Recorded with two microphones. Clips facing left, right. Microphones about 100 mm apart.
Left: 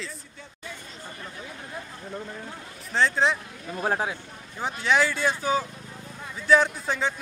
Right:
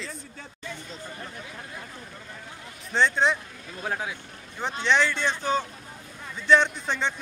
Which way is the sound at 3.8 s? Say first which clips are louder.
Left 5 dB; 35° left (ahead or behind).